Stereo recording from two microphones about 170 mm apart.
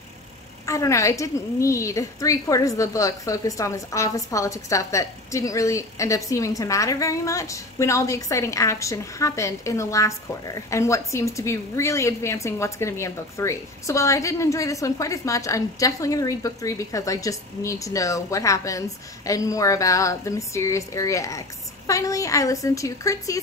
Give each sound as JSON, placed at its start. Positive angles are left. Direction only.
{"t": 0.7, "sound": "a woman's voice", "side_deg": 20}